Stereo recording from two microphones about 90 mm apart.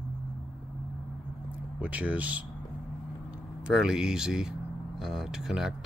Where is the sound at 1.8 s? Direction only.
15° right (ahead or behind).